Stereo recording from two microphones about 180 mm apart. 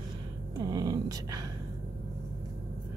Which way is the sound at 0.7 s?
20° right (ahead or behind).